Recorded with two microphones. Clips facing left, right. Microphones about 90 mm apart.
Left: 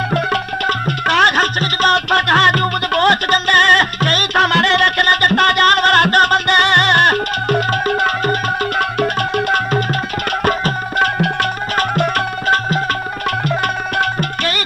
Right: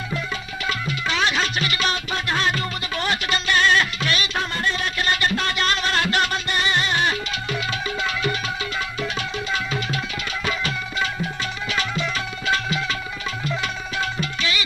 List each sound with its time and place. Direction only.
0.1 s music: 60° left (ahead or behind)
13.9 s music: 55° left (ahead or behind)